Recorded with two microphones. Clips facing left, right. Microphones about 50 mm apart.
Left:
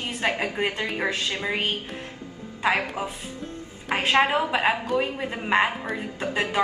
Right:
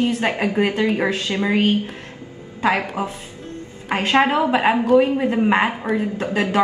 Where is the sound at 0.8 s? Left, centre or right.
Centre.